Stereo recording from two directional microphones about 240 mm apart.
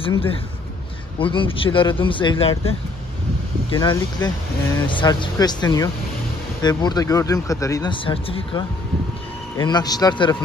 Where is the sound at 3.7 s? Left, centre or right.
Centre.